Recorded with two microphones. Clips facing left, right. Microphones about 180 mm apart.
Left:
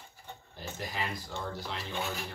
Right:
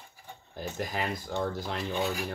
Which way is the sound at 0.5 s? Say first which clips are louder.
Right 5 dB; 50° right (ahead or behind).